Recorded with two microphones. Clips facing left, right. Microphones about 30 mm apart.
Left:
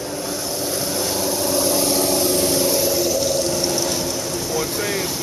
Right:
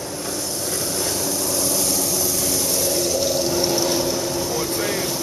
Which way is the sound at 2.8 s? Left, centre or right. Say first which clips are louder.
Left 2 dB; centre.